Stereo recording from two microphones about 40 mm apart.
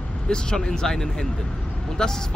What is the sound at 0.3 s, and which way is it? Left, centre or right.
Speech, centre.